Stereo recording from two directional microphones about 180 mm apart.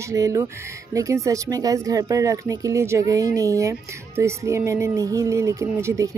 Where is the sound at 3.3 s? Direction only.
20° right (ahead or behind).